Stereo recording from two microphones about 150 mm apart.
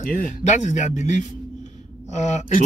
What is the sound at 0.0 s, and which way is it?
A man's voice, 65° left (ahead or behind).